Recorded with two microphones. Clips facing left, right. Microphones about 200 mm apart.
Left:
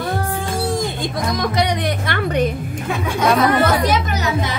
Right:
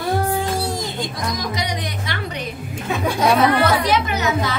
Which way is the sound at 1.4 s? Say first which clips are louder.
Left 6 dB; 60° left (ahead or behind).